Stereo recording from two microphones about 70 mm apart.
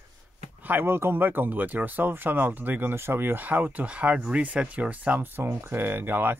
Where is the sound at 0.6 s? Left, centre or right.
Right.